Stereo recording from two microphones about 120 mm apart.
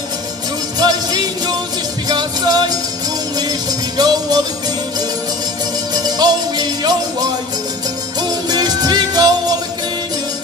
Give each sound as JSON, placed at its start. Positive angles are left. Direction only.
{"t": 0.7, "sound": "music", "side_deg": -35}
{"t": 5.9, "sound": "music", "side_deg": -35}